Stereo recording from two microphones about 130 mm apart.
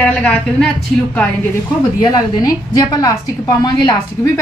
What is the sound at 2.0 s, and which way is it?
A woman's voice, 30° left (ahead or behind).